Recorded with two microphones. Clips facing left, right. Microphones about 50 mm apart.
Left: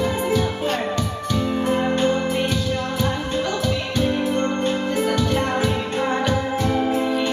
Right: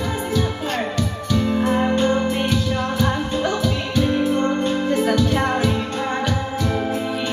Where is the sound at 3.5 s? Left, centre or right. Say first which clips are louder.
Right 1 dB; centre.